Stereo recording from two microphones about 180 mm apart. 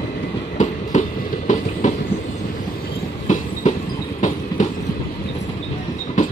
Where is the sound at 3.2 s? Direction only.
40° left (ahead or behind).